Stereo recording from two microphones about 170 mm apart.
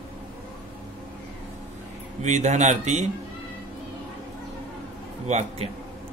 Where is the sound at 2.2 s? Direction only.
45° right (ahead or behind).